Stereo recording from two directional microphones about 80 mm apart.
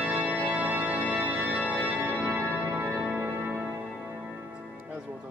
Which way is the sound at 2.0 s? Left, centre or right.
Right.